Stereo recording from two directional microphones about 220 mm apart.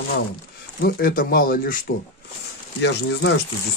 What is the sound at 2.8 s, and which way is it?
Speech, 50° left (ahead or behind).